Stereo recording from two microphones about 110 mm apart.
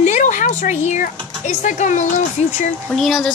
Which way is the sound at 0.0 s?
90° left.